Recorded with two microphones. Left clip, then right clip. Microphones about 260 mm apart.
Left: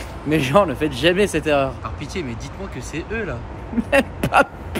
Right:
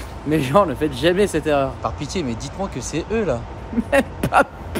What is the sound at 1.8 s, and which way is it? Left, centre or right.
Speech, centre.